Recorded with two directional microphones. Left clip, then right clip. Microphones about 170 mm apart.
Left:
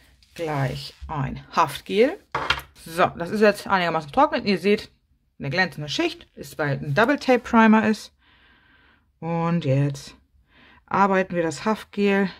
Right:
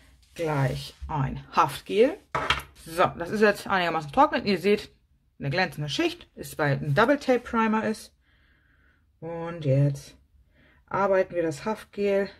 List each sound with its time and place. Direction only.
0.3 s speech: 20° left (ahead or behind)
6.9 s speech: 25° left (ahead or behind)
9.2 s speech: 40° left (ahead or behind)